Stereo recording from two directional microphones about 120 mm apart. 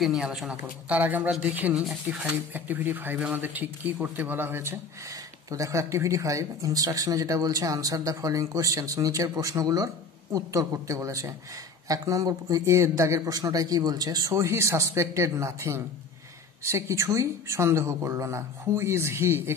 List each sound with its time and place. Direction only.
0.0 s speech: 5° right (ahead or behind); by 19.5 s 20° right (ahead or behind)